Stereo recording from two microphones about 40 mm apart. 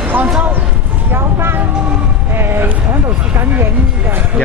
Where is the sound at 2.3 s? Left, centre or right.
Right.